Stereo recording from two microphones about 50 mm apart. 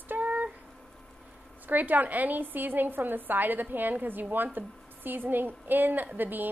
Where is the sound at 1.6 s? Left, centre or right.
Right.